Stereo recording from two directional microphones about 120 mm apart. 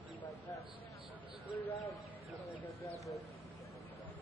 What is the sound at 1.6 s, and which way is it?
Speech, 50° left (ahead or behind).